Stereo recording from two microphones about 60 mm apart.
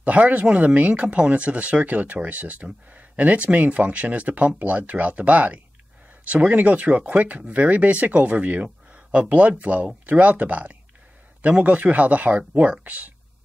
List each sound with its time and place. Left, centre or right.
0.0 s speech: right